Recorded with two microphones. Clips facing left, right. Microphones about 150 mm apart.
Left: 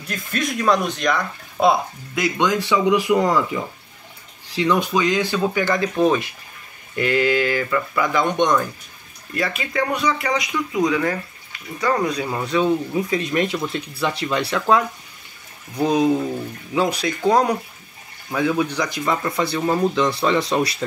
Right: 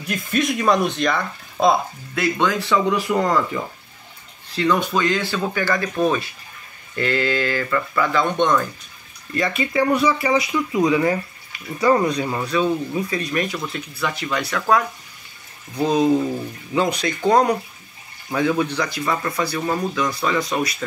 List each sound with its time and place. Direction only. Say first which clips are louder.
0.1 s speech: right 4 dB; 5° right (ahead or behind)
1.7 s speech: right 1 dB; 15° left (ahead or behind)
4.6 s speech: even; 15° left (ahead or behind)
9.3 s speech: right 3 dB; 5° left (ahead or behind); by 11.1 s 15° right (ahead or behind)
12.1 s speech: right 1 dB; 5° left (ahead or behind)
12.4 s speech: left 3 dB; 20° left (ahead or behind)
15.7 s speech: even; 10° left (ahead or behind)
19.6 s speech: left 6 dB; 15° left (ahead or behind)
20.0 s speech: left 3 dB; 30° left (ahead or behind)